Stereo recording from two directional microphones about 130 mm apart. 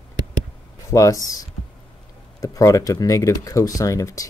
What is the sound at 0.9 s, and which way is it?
Speech, 25° left (ahead or behind).